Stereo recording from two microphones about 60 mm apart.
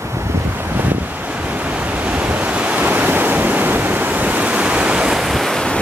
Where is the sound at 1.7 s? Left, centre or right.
Right.